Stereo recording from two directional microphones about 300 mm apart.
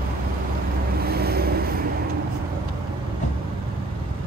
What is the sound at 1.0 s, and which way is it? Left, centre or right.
Vehicle, right.